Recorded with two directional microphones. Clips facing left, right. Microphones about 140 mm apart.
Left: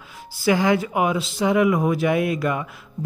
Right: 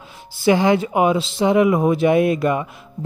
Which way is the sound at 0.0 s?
25° right (ahead or behind).